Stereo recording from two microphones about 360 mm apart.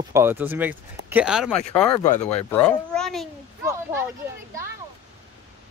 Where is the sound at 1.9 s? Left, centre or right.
Centre.